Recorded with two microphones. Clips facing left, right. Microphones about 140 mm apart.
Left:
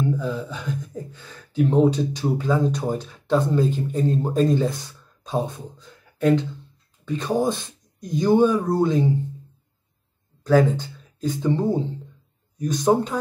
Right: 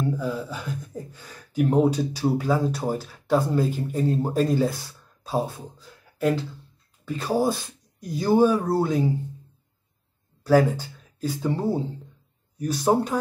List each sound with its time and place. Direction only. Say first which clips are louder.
0.0 s speech: left 2 dB; 10° right (ahead or behind)
10.4 s speech: left 1 dB; 10° right (ahead or behind)